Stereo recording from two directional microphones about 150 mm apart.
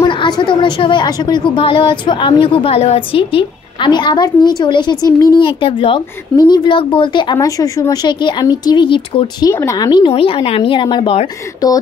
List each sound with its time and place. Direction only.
0.1 s a woman's voice: 35° left (ahead or behind)
9.5 s a woman's voice: 20° left (ahead or behind)